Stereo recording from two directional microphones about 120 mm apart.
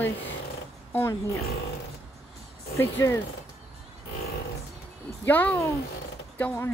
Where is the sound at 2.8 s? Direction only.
25° left (ahead or behind).